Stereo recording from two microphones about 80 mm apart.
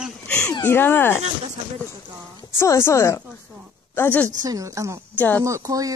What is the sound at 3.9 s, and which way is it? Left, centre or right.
Speech, left.